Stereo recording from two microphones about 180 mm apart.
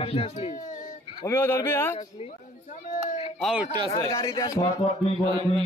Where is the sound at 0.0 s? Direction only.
30° left (ahead or behind).